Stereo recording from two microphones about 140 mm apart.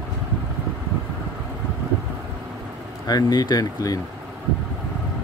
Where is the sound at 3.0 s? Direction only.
30° left (ahead or behind).